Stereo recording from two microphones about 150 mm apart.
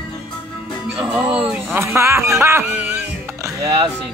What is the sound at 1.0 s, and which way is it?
Speech, 5° right (ahead or behind).